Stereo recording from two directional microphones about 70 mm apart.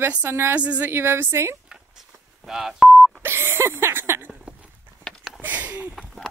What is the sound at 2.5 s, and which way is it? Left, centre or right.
Telephone dialing, centre.